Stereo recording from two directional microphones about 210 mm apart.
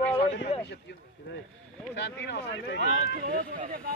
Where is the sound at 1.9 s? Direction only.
55° left (ahead or behind).